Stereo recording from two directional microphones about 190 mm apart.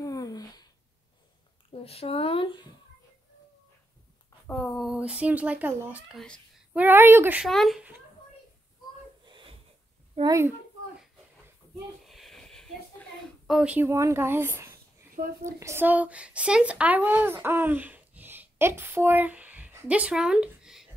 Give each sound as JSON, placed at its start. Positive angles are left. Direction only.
{"t": 0.0, "sound": "a sound", "side_deg": 20}
{"t": 1.7, "sound": "speech", "side_deg": 30}
{"t": 4.5, "sound": "speech", "side_deg": 5}
{"t": 6.7, "sound": "speech", "side_deg": -10}
{"t": 9.2, "sound": "wheeze", "side_deg": -25}
{"t": 10.2, "sound": "speech", "side_deg": -15}
{"t": 12.0, "sound": "a sound", "side_deg": 0}
{"t": 13.5, "sound": "speech", "side_deg": -5}